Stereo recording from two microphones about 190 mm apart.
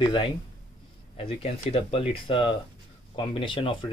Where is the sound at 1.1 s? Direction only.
30° left (ahead or behind).